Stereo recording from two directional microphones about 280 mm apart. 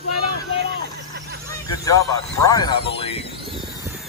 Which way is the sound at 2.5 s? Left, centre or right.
Centre.